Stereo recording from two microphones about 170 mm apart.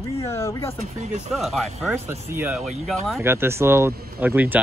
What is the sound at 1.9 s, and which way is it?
Speech, 15° right (ahead or behind).